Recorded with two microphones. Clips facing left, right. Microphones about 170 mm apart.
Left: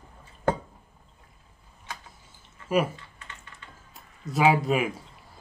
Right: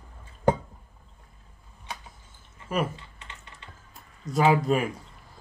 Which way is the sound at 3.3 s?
20° right (ahead or behind).